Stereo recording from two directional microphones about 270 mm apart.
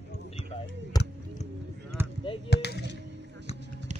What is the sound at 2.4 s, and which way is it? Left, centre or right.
Chop, left.